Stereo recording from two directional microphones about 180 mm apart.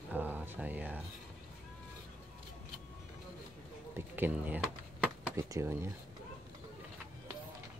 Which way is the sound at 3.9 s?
10° right (ahead or behind).